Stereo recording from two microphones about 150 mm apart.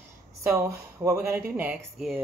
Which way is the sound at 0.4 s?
20° right (ahead or behind).